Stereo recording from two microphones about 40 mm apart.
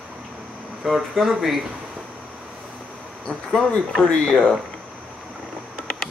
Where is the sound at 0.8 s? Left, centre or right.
Centre.